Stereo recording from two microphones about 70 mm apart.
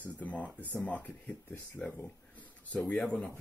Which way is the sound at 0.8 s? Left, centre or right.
Left.